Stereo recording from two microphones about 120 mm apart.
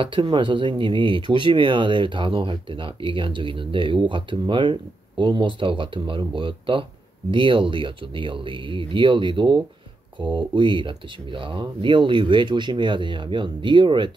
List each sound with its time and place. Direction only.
0.0 s speech: 45° right (ahead or behind)